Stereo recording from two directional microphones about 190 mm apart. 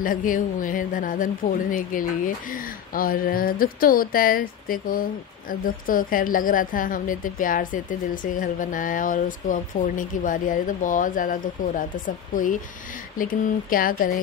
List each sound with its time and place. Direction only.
0.0 s a woman's voice: 45° left (ahead or behind)
13.2 s a woman's voice: 45° left (ahead or behind)